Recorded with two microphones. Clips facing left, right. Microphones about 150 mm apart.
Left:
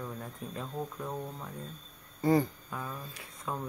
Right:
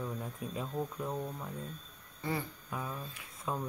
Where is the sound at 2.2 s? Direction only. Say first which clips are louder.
Left 11 dB; 40° left (ahead or behind).